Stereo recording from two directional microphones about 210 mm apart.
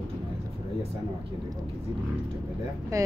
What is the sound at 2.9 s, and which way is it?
Speech, 15° right (ahead or behind).